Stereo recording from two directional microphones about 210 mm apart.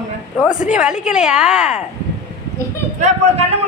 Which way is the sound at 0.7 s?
5° right (ahead or behind).